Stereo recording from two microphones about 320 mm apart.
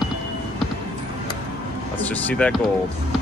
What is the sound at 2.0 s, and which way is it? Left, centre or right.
Speech, centre.